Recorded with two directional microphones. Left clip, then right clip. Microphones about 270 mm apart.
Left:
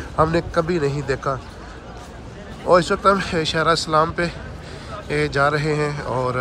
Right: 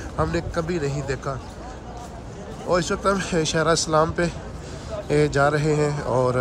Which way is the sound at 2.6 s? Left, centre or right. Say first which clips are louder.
Left 6 dB; centre.